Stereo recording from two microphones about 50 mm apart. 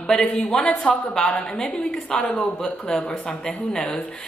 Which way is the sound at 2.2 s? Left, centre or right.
Centre.